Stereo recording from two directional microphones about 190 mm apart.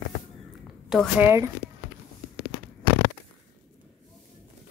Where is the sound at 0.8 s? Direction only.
Centre (ahead or behind).